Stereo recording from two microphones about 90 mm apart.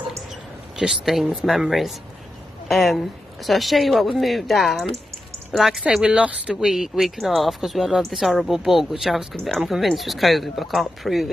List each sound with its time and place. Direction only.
0.7 s speech: 5° right (ahead or behind)